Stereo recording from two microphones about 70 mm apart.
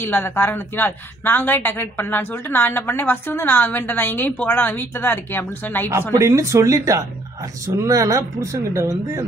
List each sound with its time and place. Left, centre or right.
0.0 s a woman's voice: left
6.1 s speech: right